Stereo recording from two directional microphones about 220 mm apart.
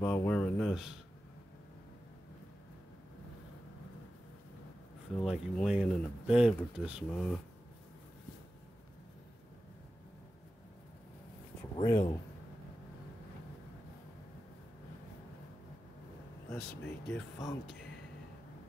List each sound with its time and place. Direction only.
0.0 s speech: 10° left (ahead or behind)
5.2 s speech: centre (ahead or behind)
11.7 s speech: 15° left (ahead or behind)
16.5 s speech: 5° left (ahead or behind)